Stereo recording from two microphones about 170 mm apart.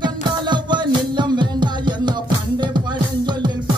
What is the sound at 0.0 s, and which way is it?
Music, 25° right (ahead or behind).